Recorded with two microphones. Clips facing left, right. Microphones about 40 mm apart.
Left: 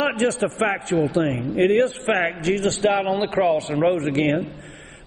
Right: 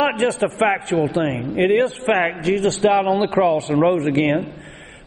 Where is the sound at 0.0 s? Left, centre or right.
Centre.